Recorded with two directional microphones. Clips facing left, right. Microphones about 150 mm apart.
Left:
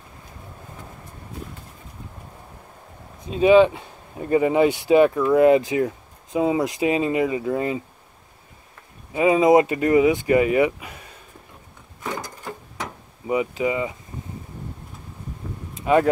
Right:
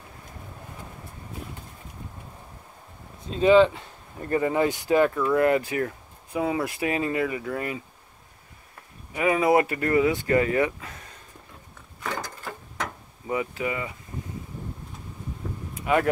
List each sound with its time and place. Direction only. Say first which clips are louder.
3.3 s speech: left 3 dB; 15° left (ahead or behind)
9.1 s speech: left 5 dB; 20° left (ahead or behind)
12.0 s wood: left 2 dB; 15° left (ahead or behind)
13.3 s speech: left 6 dB; 20° left (ahead or behind)
15.7 s a sound: left 5 dB; 25° left (ahead or behind)